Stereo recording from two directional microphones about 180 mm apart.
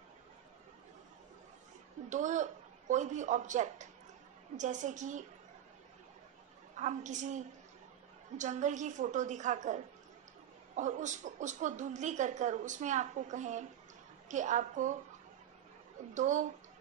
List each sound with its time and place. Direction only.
2.0 s a woman's voice: 45° right (ahead or behind)
6.8 s a woman's voice: 40° right (ahead or behind)
10.8 s a woman's voice: 45° right (ahead or behind)
16.2 s a woman's voice: 45° right (ahead or behind)